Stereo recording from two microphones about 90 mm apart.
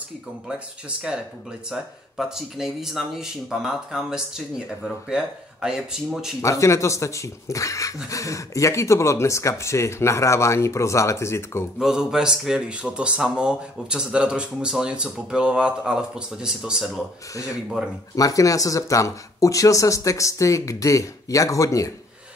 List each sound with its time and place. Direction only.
0.5 s speech: 10° right (ahead or behind)
6.4 s speech: 35° left (ahead or behind)
11.8 s speech: 5° right (ahead or behind)
17.3 s speech: 40° left (ahead or behind)